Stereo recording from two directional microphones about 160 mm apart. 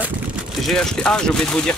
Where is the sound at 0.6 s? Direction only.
5° left (ahead or behind).